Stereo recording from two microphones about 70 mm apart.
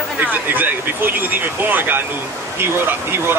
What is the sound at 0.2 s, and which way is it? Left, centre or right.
Speech, right.